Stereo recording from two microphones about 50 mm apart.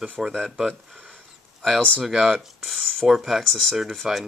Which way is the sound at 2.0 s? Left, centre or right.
Centre.